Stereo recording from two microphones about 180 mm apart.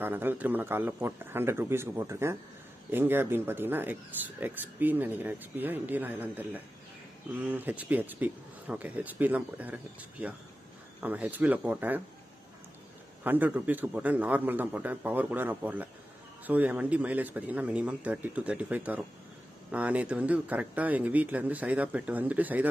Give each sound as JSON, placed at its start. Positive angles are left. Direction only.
{"t": 0.0, "sound": "speech", "side_deg": -10}
{"t": 13.2, "sound": "speech", "side_deg": -10}